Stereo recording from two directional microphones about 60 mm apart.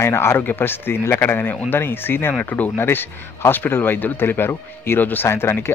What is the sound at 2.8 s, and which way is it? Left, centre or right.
Speech, left.